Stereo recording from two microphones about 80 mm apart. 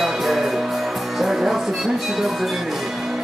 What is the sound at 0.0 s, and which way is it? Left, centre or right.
Music, centre.